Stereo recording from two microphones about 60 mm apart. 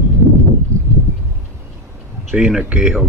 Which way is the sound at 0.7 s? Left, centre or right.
Right.